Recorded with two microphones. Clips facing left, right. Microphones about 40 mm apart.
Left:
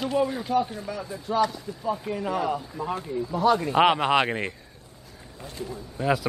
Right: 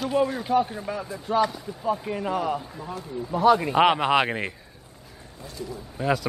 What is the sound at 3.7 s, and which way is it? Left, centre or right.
Speech, centre.